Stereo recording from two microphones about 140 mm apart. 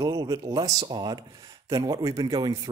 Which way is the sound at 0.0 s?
25° right (ahead or behind).